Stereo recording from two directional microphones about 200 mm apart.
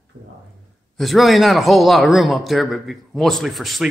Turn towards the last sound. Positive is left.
turn(degrees=0)  # may be behind; listen again after turning